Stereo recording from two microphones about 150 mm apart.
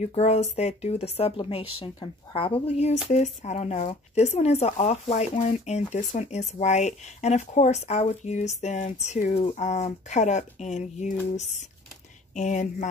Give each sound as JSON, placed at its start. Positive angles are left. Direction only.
{"t": 0.0, "sound": "speech", "side_deg": 50}